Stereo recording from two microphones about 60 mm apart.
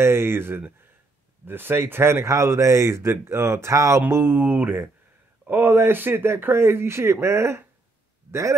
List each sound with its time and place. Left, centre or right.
0.0 s speech: right
4.1 s a man's voice: right